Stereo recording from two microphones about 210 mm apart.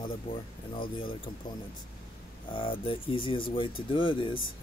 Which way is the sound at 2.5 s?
25° left (ahead or behind).